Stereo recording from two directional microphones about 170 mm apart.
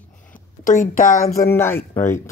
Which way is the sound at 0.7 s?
50° left (ahead or behind).